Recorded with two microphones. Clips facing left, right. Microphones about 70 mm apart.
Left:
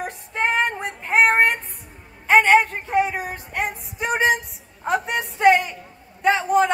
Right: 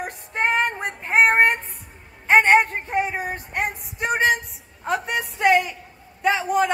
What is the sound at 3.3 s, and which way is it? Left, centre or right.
Music, right.